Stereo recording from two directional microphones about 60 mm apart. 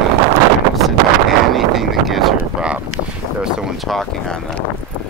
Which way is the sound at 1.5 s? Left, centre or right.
Centre.